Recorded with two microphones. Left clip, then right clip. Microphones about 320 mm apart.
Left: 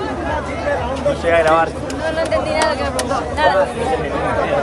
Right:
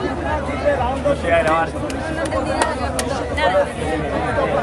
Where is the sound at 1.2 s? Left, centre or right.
Left.